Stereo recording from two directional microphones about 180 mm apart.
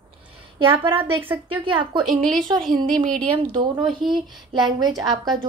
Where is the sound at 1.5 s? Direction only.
25° right (ahead or behind).